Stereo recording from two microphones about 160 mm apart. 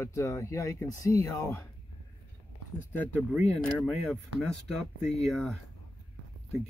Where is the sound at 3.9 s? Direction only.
Centre (ahead or behind).